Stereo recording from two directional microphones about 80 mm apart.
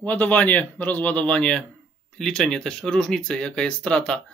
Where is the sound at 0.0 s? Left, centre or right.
Centre.